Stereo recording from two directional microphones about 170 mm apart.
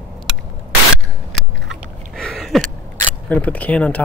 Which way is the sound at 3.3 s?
10° left (ahead or behind).